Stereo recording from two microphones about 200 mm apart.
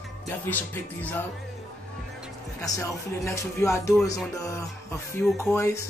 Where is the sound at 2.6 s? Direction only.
15° left (ahead or behind).